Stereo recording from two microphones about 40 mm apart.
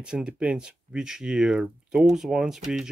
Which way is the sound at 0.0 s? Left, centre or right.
Right.